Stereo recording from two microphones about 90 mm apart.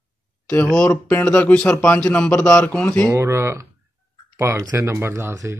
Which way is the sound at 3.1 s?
30° right (ahead or behind).